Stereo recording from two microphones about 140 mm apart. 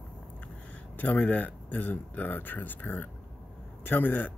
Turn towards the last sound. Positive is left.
turn(degrees=10)  # may be behind; listen again after turning